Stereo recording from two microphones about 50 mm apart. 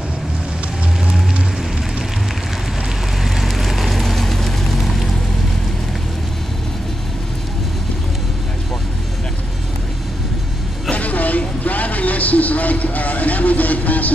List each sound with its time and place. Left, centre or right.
3.3 s vehicle: centre
10.9 s vehicle: left